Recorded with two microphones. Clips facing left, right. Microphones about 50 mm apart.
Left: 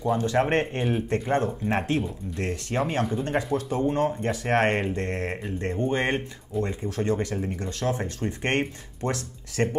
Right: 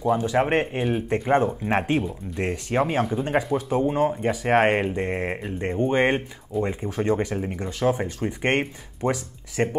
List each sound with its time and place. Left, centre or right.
0.0 s speech: centre